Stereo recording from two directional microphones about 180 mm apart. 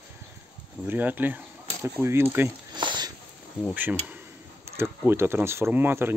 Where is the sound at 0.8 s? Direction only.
10° right (ahead or behind).